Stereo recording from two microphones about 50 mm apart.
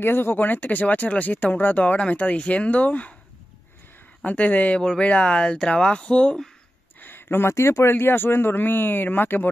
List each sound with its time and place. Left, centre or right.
0.0 s speech: left
4.2 s speech: left
4.7 s speech: left
7.0 s a sound: left
7.5 s speech: left
7.9 s a man's voice: left